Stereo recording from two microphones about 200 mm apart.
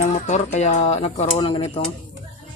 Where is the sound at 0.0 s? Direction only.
35° left (ahead or behind).